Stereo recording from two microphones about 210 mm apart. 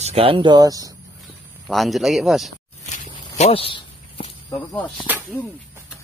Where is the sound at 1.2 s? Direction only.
Centre (ahead or behind).